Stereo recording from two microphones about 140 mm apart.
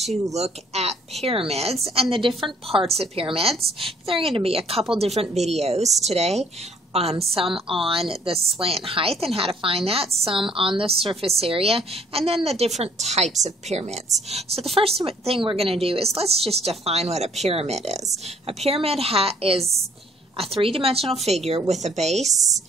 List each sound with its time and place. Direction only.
0.1 s a woman's voice: 50° right (ahead or behind)
22.3 s a woman's voice: 25° right (ahead or behind)